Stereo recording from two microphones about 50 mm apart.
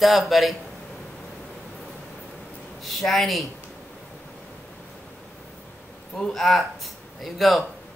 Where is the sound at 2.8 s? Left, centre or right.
Centre.